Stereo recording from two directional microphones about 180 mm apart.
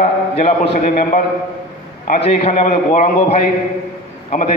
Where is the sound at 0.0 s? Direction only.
40° left (ahead or behind).